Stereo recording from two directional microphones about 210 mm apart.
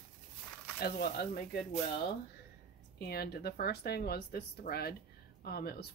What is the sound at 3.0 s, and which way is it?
A woman's voice, 50° left (ahead or behind).